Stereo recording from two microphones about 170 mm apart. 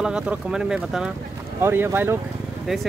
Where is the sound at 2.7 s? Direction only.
Centre (ahead or behind).